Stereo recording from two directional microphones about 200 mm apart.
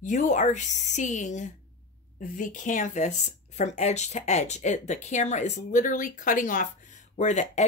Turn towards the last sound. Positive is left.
turn(degrees=35)  # may be behind; listen again after turning